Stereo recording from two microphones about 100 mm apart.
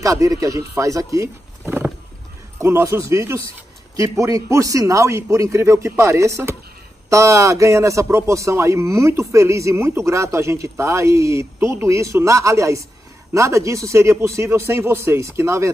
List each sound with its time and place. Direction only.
0.0 s a man's voice: 35° right (ahead or behind)
2.6 s a man's voice: 30° right (ahead or behind)